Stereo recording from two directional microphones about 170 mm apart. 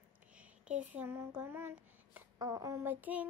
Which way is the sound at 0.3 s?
5° right (ahead or behind).